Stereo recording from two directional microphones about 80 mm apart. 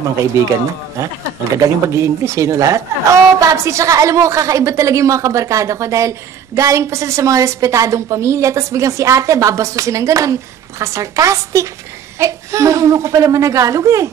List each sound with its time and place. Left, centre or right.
0.2 s speech: right